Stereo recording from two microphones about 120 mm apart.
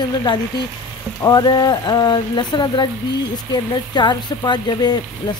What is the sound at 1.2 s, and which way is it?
A woman's voice, 35° left (ahead or behind).